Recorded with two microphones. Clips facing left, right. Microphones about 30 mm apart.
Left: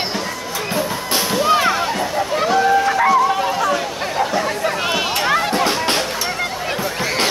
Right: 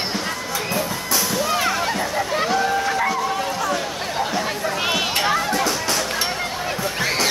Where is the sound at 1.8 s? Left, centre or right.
Centre.